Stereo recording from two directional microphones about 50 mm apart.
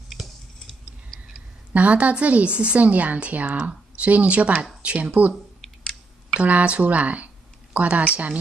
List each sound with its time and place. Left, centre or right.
1.7 s a woman's voice: right
6.3 s a woman's voice: right